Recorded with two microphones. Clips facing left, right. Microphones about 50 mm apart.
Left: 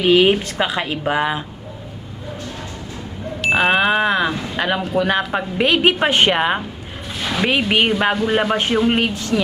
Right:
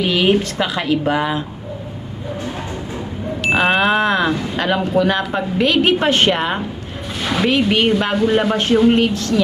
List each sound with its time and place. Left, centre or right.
0.0 s speech: centre
3.4 s speech: centre
7.2 s a sound: centre
7.4 s speech: centre